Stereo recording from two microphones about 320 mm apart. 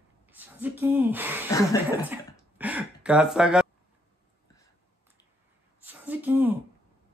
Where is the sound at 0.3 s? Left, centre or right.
Centre.